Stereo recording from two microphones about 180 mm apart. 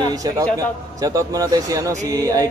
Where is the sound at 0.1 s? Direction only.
20° right (ahead or behind).